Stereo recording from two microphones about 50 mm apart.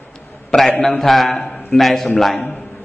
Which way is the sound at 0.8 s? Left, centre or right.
Centre.